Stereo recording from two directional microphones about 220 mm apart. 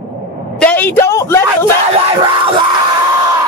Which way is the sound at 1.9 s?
25° right (ahead or behind).